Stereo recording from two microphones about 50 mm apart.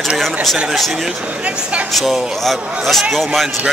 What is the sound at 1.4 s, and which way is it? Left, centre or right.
Speech, right.